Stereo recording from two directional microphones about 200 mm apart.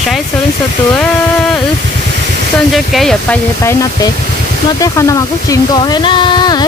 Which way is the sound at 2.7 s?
Centre (ahead or behind).